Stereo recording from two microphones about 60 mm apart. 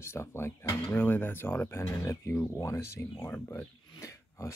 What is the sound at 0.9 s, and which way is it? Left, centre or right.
Speech, left.